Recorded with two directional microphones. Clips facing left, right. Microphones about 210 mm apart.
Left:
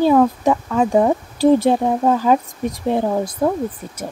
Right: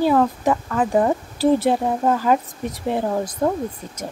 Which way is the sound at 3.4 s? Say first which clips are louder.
Left 2 dB; 10° left (ahead or behind).